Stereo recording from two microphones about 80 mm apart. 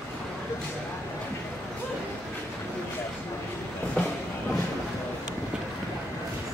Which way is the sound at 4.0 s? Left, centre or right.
Centre.